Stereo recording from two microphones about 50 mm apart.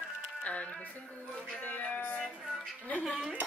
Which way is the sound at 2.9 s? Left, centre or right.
Left.